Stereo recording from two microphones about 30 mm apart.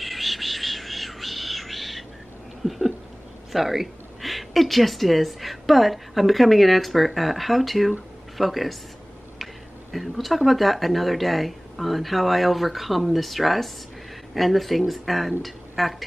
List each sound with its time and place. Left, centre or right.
0.0 s a sound: centre
3.5 s a woman's voice: centre
9.9 s speech: centre